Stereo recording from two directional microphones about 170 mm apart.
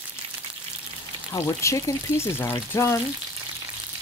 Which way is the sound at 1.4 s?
15° left (ahead or behind).